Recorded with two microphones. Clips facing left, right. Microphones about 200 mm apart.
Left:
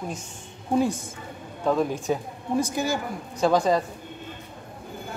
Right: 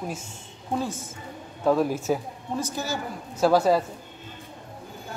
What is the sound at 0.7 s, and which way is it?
Speech, 15° left (ahead or behind).